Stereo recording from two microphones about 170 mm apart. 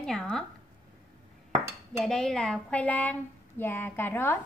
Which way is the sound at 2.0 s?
5° left (ahead or behind).